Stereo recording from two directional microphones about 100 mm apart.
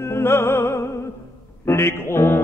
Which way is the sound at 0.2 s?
25° left (ahead or behind).